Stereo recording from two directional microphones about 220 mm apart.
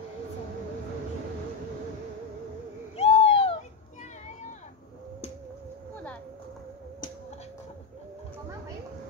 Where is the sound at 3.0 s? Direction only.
30° left (ahead or behind).